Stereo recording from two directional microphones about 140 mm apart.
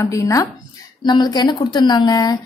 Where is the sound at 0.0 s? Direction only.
25° left (ahead or behind).